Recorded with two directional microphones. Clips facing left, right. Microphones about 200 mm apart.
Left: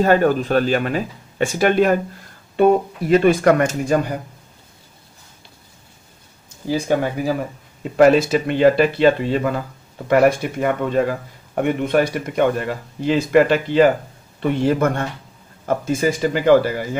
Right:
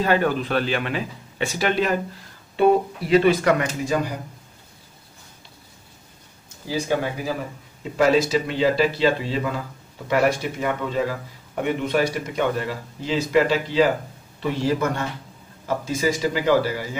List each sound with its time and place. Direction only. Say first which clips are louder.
0.0 s speech: left 5 dB; 45° left (ahead or behind)
6.7 s speech: left 4 dB; 50° left (ahead or behind)